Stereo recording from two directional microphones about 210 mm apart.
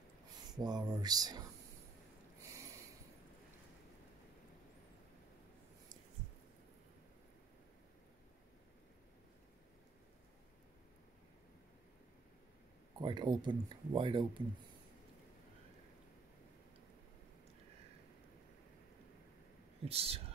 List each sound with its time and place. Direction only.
0.6 s speech: 20° right (ahead or behind)
2.4 s a sound: 15° right (ahead or behind)
13.0 s speech: 20° right (ahead or behind)
19.8 s speech: 30° right (ahead or behind)